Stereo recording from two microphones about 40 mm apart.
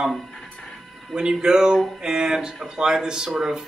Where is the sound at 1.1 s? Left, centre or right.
Centre.